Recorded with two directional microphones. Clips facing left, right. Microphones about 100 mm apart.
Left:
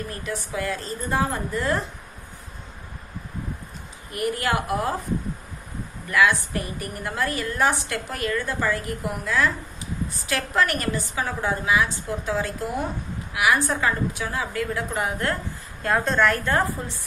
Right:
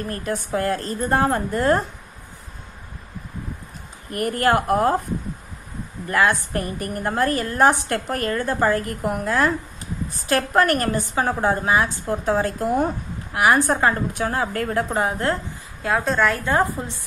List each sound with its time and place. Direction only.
0.1 s a woman's voice: 45° right (ahead or behind)
4.1 s a woman's voice: 45° right (ahead or behind)
6.0 s a woman's voice: 45° right (ahead or behind)
15.8 s a woman's voice: 5° right (ahead or behind)
16.4 s a woman's voice: 20° right (ahead or behind)